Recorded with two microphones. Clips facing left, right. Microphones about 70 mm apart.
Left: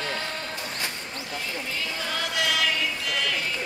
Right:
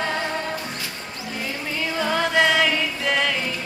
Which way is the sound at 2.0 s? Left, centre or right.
Right.